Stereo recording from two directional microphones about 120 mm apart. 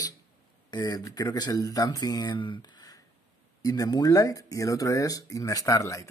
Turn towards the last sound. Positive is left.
turn(degrees=30)  # may be behind; listen again after turning